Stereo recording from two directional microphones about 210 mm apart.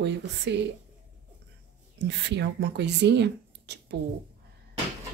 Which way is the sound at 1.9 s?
55° right (ahead or behind).